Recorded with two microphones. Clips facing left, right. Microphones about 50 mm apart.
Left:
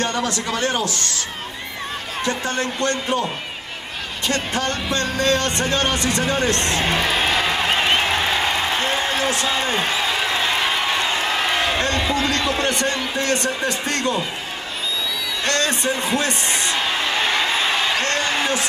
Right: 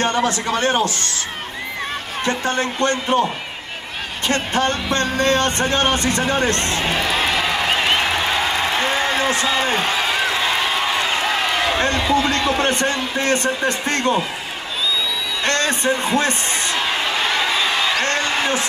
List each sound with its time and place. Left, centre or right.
0.0 s a man's voice: right
2.2 s a man's voice: right
4.3 s a man's voice: right
11.8 s a man's voice: right
15.4 s a man's voice: right
18.0 s a sound: right